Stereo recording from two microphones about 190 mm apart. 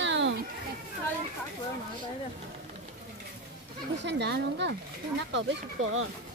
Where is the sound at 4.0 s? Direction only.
65° right (ahead or behind).